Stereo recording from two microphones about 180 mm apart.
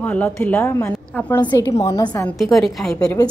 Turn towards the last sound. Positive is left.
turn(degrees=20)  # may be behind; listen again after turning